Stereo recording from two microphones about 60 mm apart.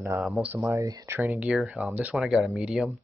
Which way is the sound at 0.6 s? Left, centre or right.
Right.